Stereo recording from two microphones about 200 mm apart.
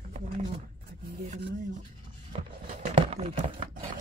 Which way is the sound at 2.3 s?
30° right (ahead or behind).